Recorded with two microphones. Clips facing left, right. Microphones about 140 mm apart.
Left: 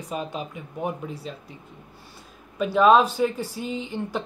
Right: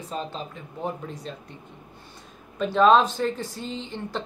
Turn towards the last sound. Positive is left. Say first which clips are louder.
# left 3 dB
turn(degrees=10)  # may be behind; listen again after turning